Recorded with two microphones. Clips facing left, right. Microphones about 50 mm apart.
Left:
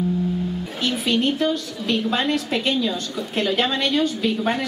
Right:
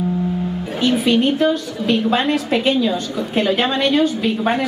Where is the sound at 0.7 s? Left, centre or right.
Centre.